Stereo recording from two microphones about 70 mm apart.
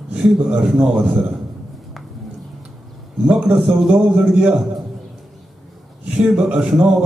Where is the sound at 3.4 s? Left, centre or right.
Centre.